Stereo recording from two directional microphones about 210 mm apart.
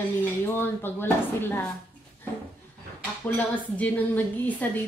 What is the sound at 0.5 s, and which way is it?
A woman's voice, 10° left (ahead or behind).